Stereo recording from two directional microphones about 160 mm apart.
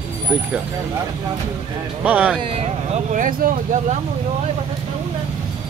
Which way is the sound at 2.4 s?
40° right (ahead or behind).